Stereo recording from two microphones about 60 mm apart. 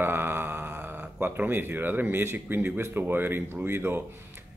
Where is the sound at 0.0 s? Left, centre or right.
Right.